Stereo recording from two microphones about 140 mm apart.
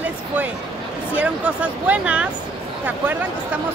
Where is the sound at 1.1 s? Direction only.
10° right (ahead or behind).